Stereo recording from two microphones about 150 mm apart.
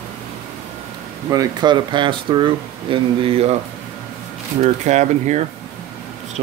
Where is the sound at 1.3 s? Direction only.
25° right (ahead or behind).